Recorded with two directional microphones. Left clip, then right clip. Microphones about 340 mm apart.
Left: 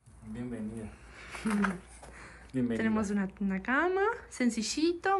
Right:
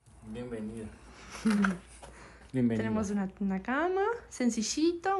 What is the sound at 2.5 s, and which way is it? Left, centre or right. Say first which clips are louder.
Speech: right 2 dB; right.